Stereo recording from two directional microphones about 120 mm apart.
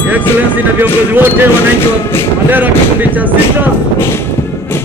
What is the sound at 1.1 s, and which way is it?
Speech, 15° right (ahead or behind).